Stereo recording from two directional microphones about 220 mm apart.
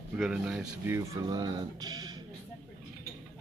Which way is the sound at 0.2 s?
5° right (ahead or behind).